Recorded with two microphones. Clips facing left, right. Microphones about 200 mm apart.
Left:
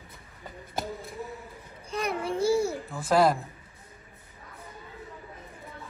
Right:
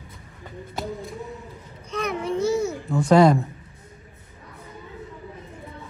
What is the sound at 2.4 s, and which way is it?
Babbling, 30° left (ahead or behind).